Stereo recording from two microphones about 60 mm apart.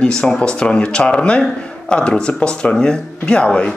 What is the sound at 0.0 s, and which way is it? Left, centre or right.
Speech, centre.